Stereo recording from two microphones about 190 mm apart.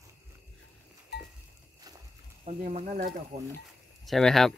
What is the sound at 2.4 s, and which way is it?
Speech, 35° right (ahead or behind).